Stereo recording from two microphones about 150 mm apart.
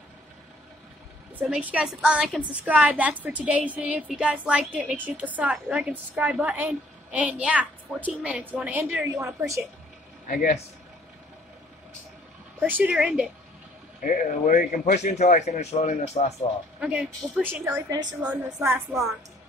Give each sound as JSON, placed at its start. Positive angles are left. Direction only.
{"t": 1.4, "sound": "a woman's voice", "side_deg": -10}
{"t": 10.2, "sound": "speech", "side_deg": 70}
{"t": 12.6, "sound": "a woman's voice", "side_deg": -10}
{"t": 14.0, "sound": "a man's voice", "side_deg": 60}
{"t": 16.8, "sound": "a woman's voice", "side_deg": -10}
{"t": 17.8, "sound": "a woman's voice", "side_deg": -25}
{"t": 18.3, "sound": "a woman's voice", "side_deg": -15}